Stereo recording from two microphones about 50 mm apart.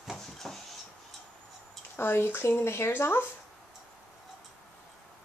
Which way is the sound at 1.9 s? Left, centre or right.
Left.